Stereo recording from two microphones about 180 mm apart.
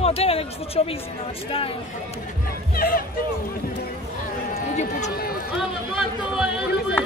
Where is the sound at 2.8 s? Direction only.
55° left (ahead or behind).